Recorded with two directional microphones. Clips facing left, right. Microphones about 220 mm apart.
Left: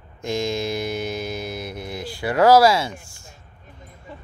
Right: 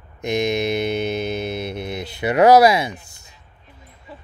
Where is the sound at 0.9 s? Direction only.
65° right (ahead or behind).